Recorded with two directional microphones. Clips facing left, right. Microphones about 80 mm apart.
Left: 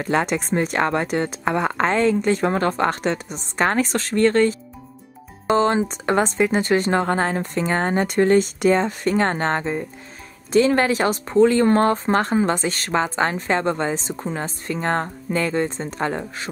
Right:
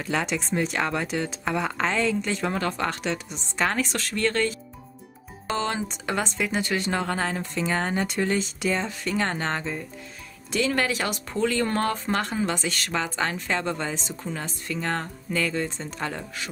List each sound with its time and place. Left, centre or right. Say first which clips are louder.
0.0 s speech: left 6 dB; left
5.6 s a woman's voice: left 8 dB; left